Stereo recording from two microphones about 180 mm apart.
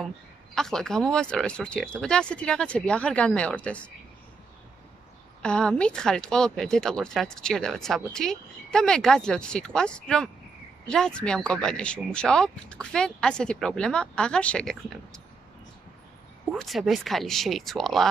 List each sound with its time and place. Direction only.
0.6 s speech: centre (ahead or behind)
5.4 s speech: 5° left (ahead or behind)
16.5 s speech: centre (ahead or behind)